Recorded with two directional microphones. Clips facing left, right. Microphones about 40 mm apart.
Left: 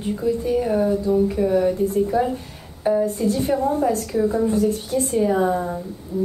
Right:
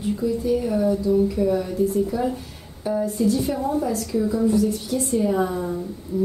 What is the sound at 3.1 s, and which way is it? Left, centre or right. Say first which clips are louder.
A woman's voice: left 1 dB; left.